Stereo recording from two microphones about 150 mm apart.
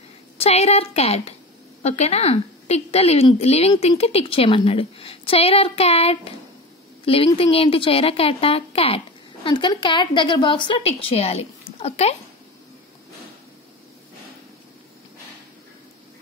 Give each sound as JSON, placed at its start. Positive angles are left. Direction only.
{"t": 0.4, "sound": "a woman's voice", "side_deg": 45}
{"t": 7.3, "sound": "speech", "side_deg": 40}